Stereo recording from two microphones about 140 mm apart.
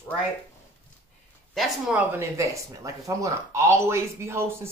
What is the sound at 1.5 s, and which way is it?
Speech, 5° right (ahead or behind).